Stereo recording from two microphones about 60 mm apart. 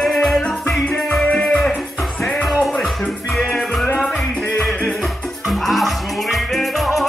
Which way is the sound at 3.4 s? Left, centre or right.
Centre.